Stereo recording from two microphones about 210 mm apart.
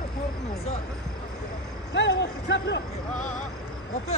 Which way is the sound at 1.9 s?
60° left (ahead or behind).